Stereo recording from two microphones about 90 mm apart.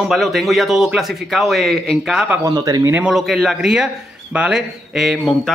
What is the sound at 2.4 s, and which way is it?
Speech, 45° right (ahead or behind).